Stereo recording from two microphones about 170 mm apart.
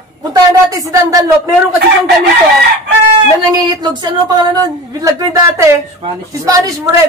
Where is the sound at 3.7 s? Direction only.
25° right (ahead or behind).